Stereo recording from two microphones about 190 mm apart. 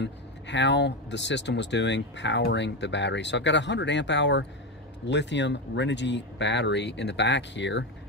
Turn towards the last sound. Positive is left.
turn(degrees=70)  # may be behind; listen again after turning